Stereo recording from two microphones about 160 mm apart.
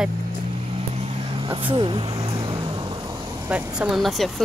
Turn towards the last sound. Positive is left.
turn(degrees=0)  # may be behind; listen again after turning